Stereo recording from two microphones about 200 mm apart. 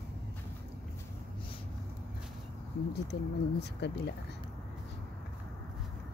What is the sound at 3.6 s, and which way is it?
Speech, 55° left (ahead or behind).